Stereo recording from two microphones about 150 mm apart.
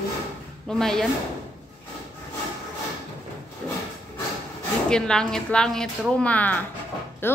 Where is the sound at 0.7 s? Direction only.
5° left (ahead or behind).